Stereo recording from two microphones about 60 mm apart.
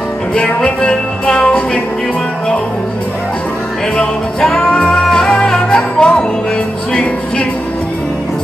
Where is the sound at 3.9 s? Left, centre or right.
Centre.